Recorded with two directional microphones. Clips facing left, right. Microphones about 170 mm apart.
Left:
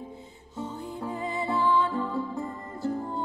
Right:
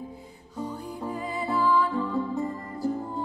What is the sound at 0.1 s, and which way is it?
Music, 25° left (ahead or behind).